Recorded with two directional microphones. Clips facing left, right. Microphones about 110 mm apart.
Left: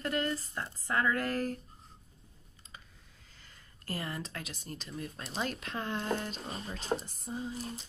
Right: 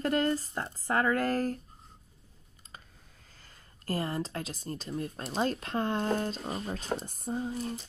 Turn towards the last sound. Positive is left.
turn(degrees=-50)  # may be behind; listen again after turning